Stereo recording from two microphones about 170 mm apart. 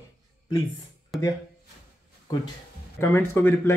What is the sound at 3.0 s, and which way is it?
Speech, 15° left (ahead or behind).